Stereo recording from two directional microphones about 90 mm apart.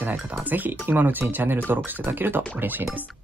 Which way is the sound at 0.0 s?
20° right (ahead or behind).